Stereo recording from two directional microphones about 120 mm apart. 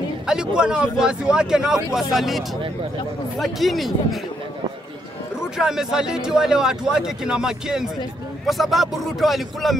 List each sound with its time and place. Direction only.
0.6 s speech: 5° right (ahead or behind)
5.4 s speech: 5° right (ahead or behind)